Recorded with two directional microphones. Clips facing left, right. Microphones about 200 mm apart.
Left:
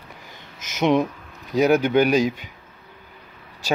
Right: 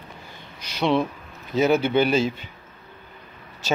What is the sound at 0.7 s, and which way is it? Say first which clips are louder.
Speech: left 3 dB; 20° left (ahead or behind).